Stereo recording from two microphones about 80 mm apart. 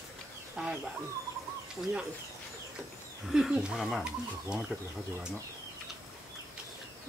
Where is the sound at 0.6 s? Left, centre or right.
Centre.